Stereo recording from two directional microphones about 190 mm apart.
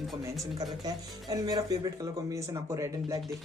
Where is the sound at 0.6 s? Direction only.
20° right (ahead or behind).